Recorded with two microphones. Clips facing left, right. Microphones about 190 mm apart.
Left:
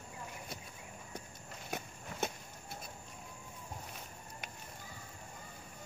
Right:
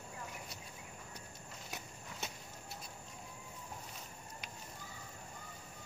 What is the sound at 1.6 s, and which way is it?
Horse, 50° left (ahead or behind).